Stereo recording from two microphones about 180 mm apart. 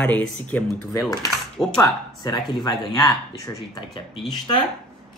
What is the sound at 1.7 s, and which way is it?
Speech, 25° left (ahead or behind).